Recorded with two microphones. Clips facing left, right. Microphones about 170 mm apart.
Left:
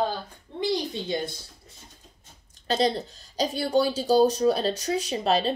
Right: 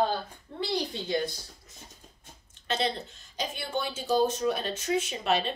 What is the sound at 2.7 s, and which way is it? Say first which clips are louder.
A woman's voice: left 6 dB; 35° left (ahead or behind).